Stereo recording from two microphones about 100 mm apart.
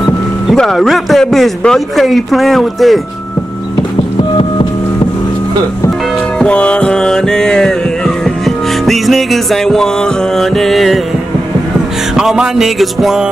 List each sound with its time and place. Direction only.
0.5 s speech: centre (ahead or behind)
4.2 s music: 55° left (ahead or behind)
6.4 s music: 10° left (ahead or behind)
8.8 s speech: centre (ahead or behind)
12.2 s speech: 5° right (ahead or behind)